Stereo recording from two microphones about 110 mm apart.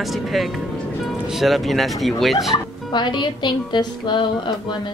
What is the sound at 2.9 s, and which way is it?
A woman's voice, 45° left (ahead or behind).